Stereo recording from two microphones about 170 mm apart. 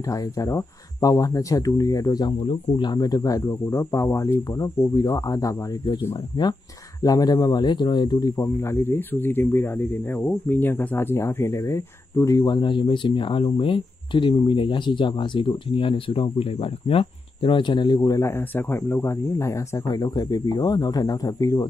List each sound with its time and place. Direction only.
0.1 s speech: 20° left (ahead or behind)